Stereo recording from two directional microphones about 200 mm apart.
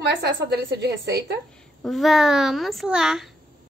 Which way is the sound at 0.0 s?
55° right (ahead or behind).